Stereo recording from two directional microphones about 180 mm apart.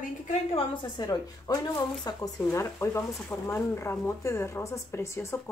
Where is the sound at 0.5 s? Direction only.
25° left (ahead or behind).